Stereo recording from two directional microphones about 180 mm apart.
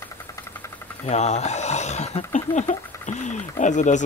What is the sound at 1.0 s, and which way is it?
Speech, 40° left (ahead or behind).